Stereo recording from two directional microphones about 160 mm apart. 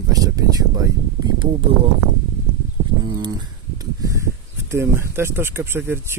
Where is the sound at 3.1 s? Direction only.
25° right (ahead or behind).